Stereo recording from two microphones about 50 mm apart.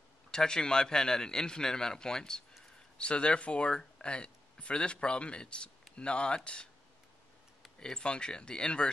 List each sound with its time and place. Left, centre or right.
0.3 s a man's voice: centre
7.8 s a man's voice: centre